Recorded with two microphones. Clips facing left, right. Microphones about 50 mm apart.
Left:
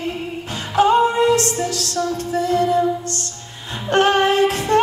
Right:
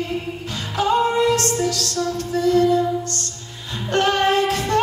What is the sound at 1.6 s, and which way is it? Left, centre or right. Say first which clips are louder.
Music: even; left.